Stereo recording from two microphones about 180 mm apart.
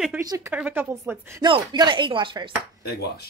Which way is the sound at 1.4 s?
25° right (ahead or behind).